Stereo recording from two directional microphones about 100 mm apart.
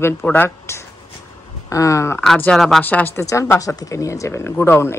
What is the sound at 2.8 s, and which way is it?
Speech, 15° left (ahead or behind).